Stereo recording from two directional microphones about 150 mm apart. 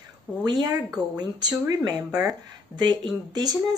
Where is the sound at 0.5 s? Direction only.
30° right (ahead or behind).